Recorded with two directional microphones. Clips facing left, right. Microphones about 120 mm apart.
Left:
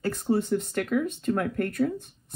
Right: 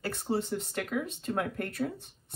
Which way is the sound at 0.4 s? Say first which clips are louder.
Left 6 dB; 50° left (ahead or behind).